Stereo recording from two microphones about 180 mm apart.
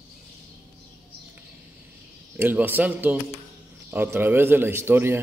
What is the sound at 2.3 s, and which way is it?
Speech, 10° right (ahead or behind).